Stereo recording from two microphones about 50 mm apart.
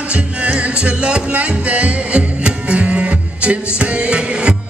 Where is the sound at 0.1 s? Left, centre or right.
Right.